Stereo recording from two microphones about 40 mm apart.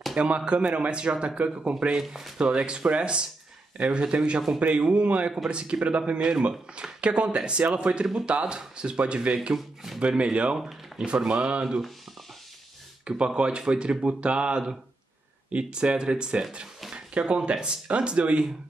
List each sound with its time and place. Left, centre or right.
0.1 s speech: right
13.2 s speech: right